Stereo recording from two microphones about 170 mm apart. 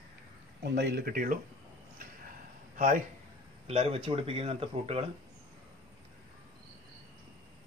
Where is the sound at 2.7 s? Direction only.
50° right (ahead or behind).